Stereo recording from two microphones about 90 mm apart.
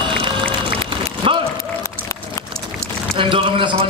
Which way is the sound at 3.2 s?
70° right (ahead or behind).